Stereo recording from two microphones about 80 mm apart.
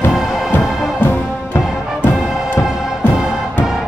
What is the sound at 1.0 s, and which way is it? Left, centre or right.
Music, left.